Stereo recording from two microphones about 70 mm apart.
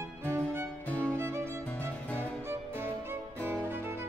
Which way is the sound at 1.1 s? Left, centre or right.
Right.